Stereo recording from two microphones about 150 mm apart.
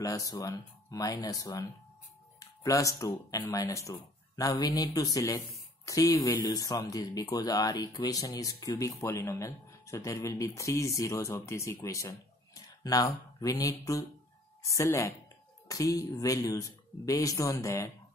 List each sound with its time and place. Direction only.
0.0 s speech: 25° left (ahead or behind)